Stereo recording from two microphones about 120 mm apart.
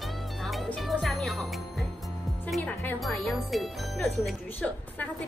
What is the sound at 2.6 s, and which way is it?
Speech, 15° left (ahead or behind).